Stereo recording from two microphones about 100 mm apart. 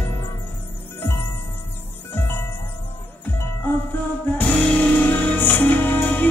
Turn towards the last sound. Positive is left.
turn(degrees=20)  # may be behind; listen again after turning